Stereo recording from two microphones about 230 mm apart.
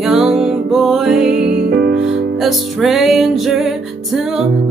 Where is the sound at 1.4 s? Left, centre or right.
Right.